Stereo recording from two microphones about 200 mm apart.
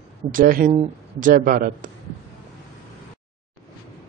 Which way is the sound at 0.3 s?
45° right (ahead or behind).